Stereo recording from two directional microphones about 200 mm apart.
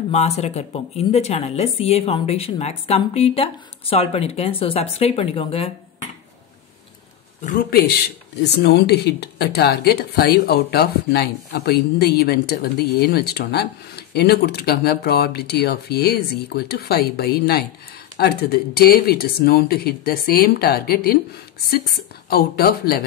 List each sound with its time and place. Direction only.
0.1 s speech: 35° left (ahead or behind)
7.4 s speech: 45° left (ahead or behind)
22.3 s speech: 50° left (ahead or behind)